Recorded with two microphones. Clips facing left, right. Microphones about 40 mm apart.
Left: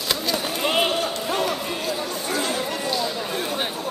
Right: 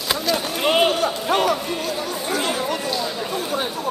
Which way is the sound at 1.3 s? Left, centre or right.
Right.